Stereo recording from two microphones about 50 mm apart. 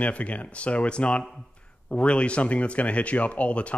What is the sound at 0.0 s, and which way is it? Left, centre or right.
Speech, left.